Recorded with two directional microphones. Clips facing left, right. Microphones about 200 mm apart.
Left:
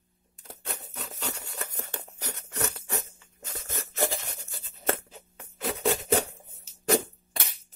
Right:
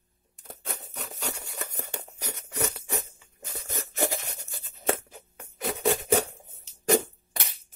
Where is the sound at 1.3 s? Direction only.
10° right (ahead or behind).